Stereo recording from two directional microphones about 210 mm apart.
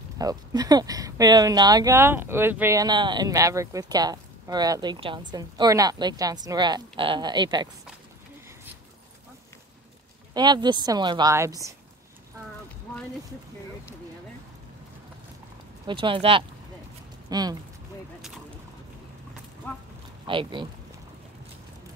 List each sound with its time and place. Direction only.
0.2 s speech: 15° right (ahead or behind)
10.3 s a woman's voice: 20° right (ahead or behind)
15.9 s a woman's voice: 25° right (ahead or behind)
19.6 s pig: 10° left (ahead or behind)
20.2 s a woman's voice: 25° right (ahead or behind)